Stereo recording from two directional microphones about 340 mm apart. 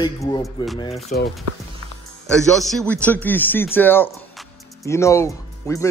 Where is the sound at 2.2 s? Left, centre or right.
Centre.